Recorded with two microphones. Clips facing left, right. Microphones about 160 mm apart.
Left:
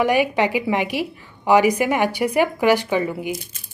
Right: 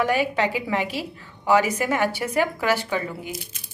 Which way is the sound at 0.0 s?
15° left (ahead or behind).